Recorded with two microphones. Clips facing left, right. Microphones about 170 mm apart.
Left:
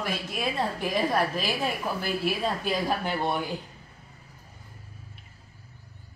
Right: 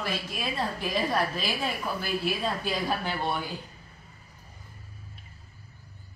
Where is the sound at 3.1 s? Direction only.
15° left (ahead or behind).